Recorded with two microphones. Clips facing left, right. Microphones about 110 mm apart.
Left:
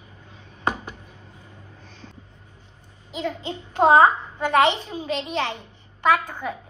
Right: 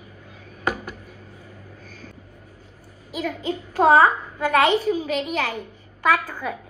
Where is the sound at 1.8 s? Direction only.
25° left (ahead or behind).